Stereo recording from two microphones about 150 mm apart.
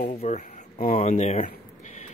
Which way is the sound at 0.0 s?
50° left (ahead or behind).